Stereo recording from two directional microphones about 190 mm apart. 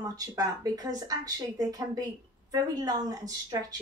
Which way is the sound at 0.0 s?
20° right (ahead or behind).